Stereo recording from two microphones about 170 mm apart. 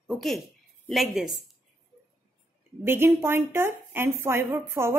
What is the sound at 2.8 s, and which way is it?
A woman's voice, 15° right (ahead or behind).